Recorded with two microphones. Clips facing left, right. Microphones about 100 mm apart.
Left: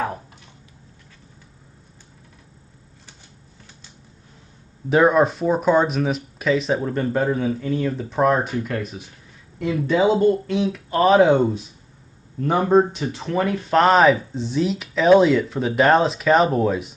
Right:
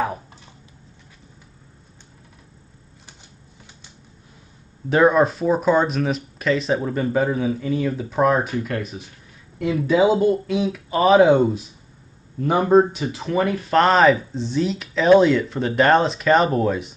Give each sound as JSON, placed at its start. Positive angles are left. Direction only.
{"t": 4.8, "sound": "speech", "side_deg": 0}